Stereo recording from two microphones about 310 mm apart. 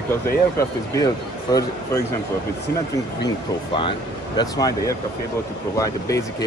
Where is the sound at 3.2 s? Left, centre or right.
Centre.